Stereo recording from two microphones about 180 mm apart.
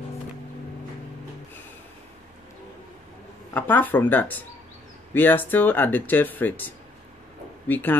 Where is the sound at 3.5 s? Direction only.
10° left (ahead or behind).